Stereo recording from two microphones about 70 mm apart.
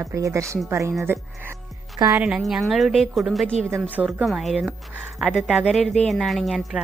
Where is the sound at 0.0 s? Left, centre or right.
Right.